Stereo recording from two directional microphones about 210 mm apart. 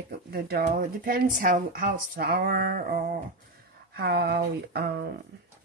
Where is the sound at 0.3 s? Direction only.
45° right (ahead or behind).